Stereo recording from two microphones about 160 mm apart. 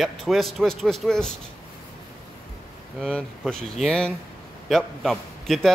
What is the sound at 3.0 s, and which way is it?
Speech, 5° left (ahead or behind).